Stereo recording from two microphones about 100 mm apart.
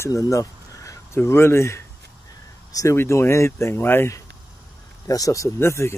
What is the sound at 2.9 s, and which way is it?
A man's voice, 25° left (ahead or behind).